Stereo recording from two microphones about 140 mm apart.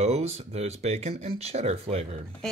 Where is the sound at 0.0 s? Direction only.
50° right (ahead or behind).